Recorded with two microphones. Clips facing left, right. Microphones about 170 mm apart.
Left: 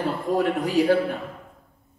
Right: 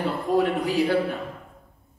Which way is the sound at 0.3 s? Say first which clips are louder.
Right 1 dB; 45° left (ahead or behind).